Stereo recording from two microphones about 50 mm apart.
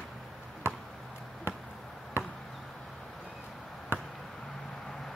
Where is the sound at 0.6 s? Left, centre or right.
Left.